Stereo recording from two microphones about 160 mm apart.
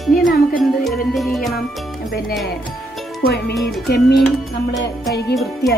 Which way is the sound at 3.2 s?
90° left.